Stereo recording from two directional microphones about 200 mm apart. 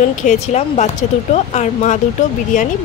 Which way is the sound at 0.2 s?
35° left (ahead or behind).